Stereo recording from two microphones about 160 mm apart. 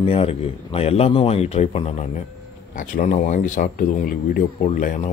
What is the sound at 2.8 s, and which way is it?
Speech, 55° left (ahead or behind).